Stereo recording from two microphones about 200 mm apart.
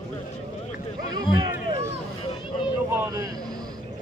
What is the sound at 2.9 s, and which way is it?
Vehicle, 15° right (ahead or behind).